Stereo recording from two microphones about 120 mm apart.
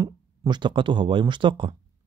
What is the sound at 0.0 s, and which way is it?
Speech, 35° right (ahead or behind).